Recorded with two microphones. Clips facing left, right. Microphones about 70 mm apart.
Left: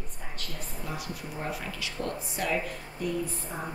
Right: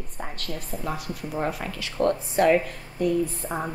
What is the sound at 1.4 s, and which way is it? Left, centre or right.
Speech, right.